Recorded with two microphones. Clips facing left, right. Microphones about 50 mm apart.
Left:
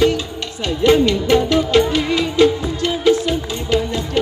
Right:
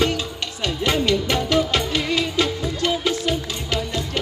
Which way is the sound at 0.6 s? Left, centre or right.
Left.